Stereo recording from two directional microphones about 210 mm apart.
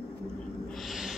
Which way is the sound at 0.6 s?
Centre (ahead or behind).